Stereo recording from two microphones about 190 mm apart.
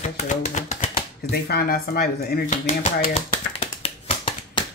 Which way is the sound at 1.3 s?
55° left (ahead or behind).